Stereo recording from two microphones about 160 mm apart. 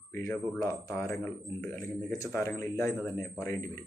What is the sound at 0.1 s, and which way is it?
A man's voice, 15° left (ahead or behind).